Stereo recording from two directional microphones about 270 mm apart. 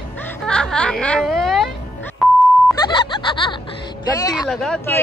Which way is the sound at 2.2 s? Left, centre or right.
Centre.